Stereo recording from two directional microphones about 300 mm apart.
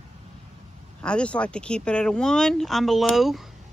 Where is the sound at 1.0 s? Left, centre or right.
Centre.